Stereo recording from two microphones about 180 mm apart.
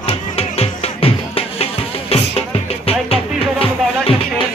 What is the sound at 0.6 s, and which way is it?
Music, 30° left (ahead or behind).